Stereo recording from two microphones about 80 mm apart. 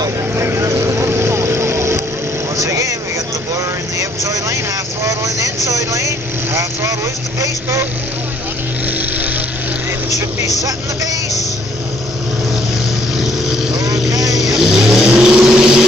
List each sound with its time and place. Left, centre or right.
0.4 s vehicle: right
4.0 s vehicle: right
14.3 s vehicle: centre